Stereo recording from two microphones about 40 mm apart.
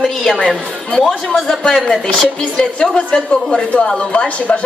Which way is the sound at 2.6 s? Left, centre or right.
Left.